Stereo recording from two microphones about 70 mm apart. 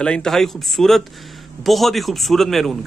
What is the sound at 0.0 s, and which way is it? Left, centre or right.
Speech, centre.